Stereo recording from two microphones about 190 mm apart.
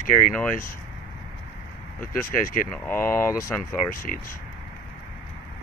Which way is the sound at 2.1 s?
45° left (ahead or behind).